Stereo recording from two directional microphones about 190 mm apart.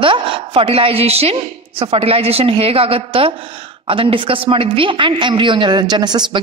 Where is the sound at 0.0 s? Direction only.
25° right (ahead or behind).